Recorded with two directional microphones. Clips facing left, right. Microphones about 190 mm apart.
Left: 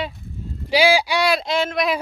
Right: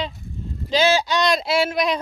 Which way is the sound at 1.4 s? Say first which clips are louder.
Right 1 dB; 5° right (ahead or behind).